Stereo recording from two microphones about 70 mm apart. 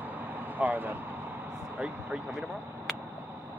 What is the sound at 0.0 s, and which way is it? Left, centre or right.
Vehicle, right.